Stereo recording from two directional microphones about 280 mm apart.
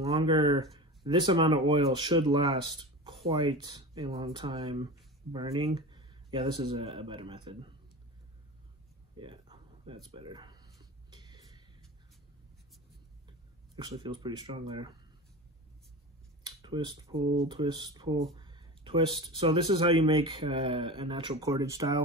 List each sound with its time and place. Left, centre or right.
0.0 s speech: centre
9.1 s a sound: centre
13.7 s speech: centre
16.4 s speech: centre